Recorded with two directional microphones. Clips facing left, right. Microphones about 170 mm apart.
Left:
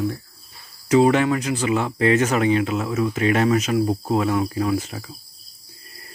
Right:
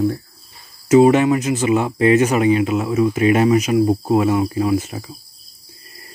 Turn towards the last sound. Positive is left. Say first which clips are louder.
# right 4 dB
turn(degrees=-15)  # may be behind; listen again after turning